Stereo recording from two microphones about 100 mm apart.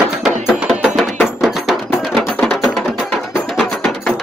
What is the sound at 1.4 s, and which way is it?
Music, centre (ahead or behind).